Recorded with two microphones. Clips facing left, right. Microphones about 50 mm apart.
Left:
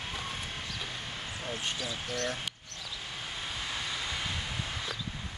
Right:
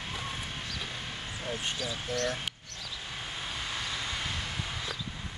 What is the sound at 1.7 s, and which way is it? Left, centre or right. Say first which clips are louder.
Speech: right 2 dB; centre.